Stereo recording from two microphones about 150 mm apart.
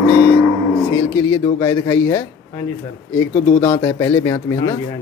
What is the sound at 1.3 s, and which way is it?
Speech, 20° left (ahead or behind).